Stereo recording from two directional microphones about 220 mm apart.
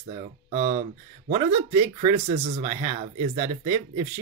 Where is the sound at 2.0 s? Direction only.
25° right (ahead or behind).